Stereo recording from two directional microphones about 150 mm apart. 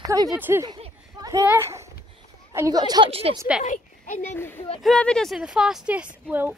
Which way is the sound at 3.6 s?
55° left (ahead or behind).